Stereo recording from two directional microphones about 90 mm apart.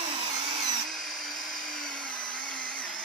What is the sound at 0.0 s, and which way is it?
Drill, 65° right (ahead or behind).